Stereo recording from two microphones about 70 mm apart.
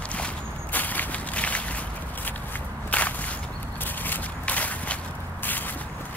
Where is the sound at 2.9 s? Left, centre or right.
Left.